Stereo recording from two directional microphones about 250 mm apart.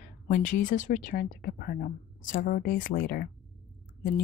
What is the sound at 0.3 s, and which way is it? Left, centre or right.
A woman's voice, left.